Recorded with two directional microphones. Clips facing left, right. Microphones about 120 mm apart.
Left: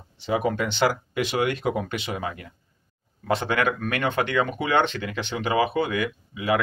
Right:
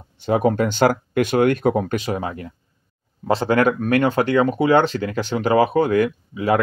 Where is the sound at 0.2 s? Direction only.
45° right (ahead or behind).